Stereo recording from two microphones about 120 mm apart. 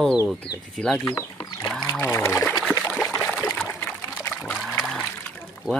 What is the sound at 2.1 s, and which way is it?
Speech, 25° left (ahead or behind).